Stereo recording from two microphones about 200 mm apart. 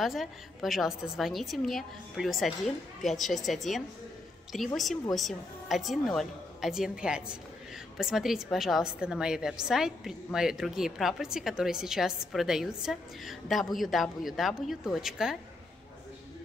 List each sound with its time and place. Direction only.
0.0 s a woman's voice: centre (ahead or behind)